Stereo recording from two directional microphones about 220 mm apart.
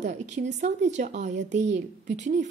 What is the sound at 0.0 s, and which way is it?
A woman's voice, 30° right (ahead or behind).